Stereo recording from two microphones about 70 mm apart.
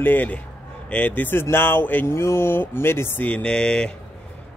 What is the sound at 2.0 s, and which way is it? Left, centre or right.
A man's voice, left.